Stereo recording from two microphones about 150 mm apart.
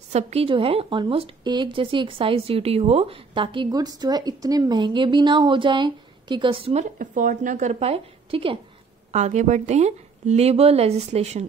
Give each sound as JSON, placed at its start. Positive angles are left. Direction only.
{"t": 0.1, "sound": "speech", "side_deg": -45}
{"t": 9.1, "sound": "a woman's voice", "side_deg": -50}